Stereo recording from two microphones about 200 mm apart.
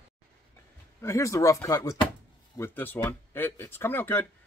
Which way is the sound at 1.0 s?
15° left (ahead or behind).